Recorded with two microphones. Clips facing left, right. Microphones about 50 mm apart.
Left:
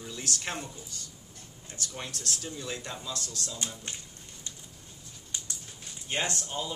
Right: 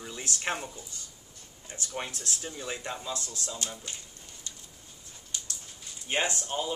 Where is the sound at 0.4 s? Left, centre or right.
Right.